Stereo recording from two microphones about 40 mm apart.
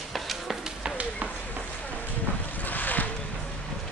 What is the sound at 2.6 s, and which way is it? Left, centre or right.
Boat, left.